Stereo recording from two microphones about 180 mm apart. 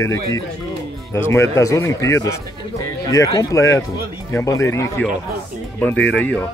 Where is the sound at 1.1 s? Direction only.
15° left (ahead or behind).